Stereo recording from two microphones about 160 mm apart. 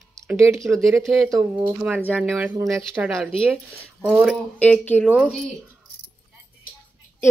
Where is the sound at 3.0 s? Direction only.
10° right (ahead or behind).